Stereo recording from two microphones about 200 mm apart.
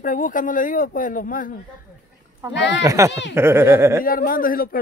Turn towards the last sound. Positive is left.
turn(degrees=45)  # may be behind; listen again after turning